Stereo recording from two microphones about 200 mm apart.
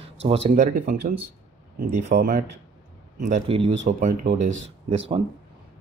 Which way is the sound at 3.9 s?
40° right (ahead or behind).